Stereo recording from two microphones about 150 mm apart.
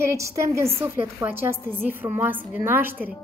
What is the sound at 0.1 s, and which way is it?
A woman's voice, 20° right (ahead or behind).